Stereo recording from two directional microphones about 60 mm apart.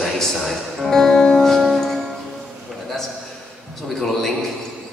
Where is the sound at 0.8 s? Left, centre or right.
Centre.